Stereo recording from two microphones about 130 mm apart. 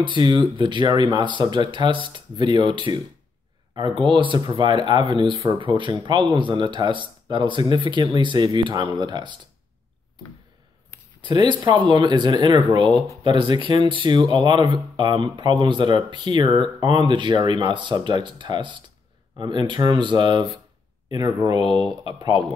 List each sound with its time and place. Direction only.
0.0 s speech: 40° right (ahead or behind)
11.1 s speech: 35° right (ahead or behind)
12.8 s speech: 5° left (ahead or behind)
13.2 s speech: 40° right (ahead or behind)